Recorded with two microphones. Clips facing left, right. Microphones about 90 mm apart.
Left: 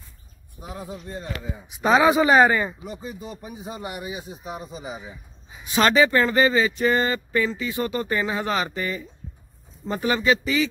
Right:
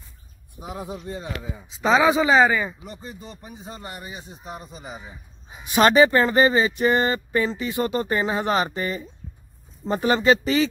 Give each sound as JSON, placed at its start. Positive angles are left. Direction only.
{"t": 0.6, "sound": "speech", "side_deg": -20}
{"t": 1.2, "sound": "speech", "side_deg": -5}
{"t": 1.7, "sound": "speech", "side_deg": 15}
{"t": 2.5, "sound": "a man's voice", "side_deg": 0}
{"t": 5.8, "sound": "speech", "side_deg": -25}